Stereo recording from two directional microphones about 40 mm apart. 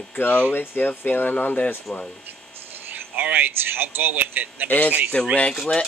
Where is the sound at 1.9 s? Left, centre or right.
Left.